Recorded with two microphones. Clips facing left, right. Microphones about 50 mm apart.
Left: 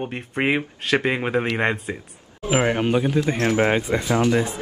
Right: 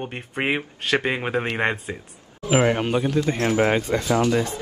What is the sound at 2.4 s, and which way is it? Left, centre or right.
Speech, centre.